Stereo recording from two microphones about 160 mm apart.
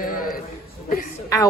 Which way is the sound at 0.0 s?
65° left (ahead or behind).